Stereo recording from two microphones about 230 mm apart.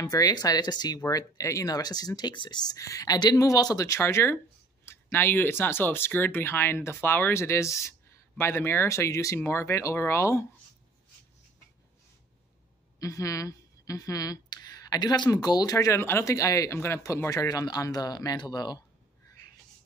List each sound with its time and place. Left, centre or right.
0.0 s speech: centre
13.0 s speech: centre